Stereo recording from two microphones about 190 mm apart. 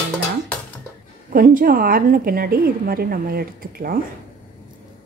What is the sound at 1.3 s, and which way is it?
A woman's voice, 45° right (ahead or behind).